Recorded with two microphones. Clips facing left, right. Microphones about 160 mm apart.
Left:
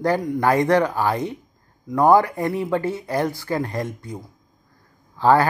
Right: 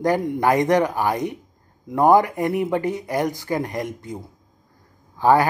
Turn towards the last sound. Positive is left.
turn(degrees=-15)  # may be behind; listen again after turning